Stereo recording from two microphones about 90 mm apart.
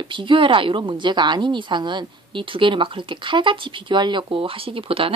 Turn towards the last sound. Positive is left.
turn(degrees=-90)